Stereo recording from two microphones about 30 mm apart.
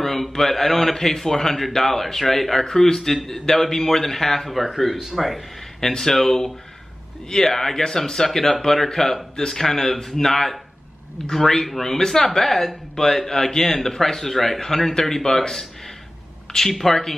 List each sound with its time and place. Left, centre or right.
0.0 s speech: centre
4.6 s speech: centre
5.8 s speech: centre
16.7 s speech: centre